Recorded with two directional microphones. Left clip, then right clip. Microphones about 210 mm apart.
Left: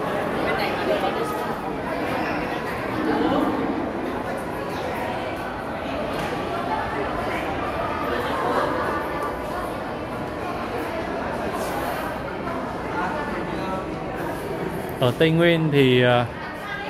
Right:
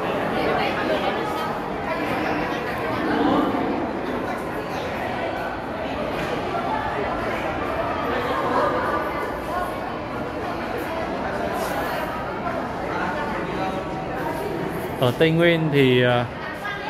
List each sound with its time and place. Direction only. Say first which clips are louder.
15.0 s speech: even; 5° left (ahead or behind)